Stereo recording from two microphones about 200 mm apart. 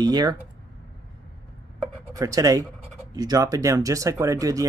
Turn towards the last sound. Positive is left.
turn(degrees=-15)  # may be behind; listen again after turning